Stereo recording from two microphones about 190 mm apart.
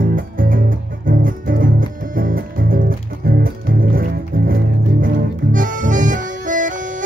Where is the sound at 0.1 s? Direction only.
45° right (ahead or behind).